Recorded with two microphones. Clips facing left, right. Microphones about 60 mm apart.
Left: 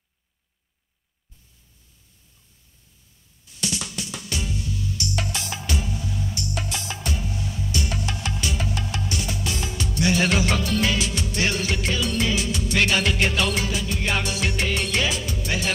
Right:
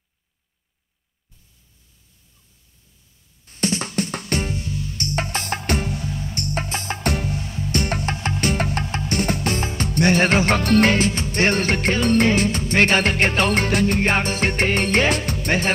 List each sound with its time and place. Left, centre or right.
3.4 s music: right